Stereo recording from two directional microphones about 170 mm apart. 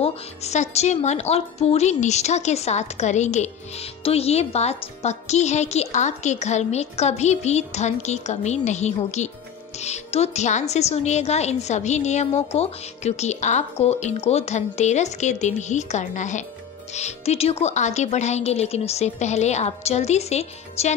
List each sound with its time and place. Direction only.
0.0 s speech: 40° left (ahead or behind)